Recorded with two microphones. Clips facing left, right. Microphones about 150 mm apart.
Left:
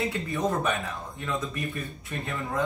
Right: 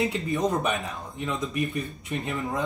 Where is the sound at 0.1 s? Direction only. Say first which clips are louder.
Right 2 dB; 20° right (ahead or behind).